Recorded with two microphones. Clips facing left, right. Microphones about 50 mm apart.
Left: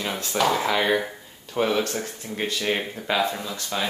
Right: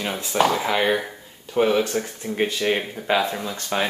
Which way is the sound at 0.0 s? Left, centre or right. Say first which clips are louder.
Right 2 dB; centre.